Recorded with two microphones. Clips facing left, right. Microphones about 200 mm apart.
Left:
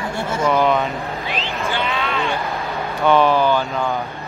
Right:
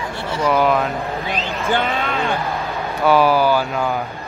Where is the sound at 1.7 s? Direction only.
50° right (ahead or behind).